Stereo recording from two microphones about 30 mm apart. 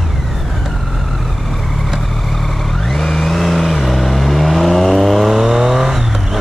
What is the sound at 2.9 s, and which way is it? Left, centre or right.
Vehicle, centre.